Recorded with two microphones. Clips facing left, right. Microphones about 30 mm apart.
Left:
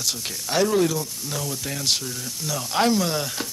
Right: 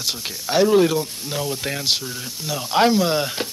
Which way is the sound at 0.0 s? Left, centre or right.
Centre.